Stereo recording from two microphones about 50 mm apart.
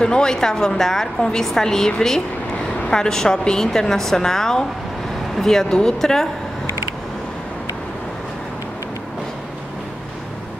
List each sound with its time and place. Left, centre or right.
0.0 s a woman's voice: centre